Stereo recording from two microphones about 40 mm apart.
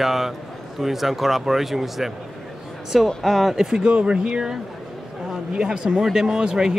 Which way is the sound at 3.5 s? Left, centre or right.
Centre.